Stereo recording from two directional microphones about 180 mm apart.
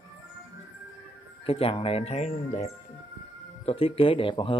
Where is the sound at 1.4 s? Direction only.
30° left (ahead or behind).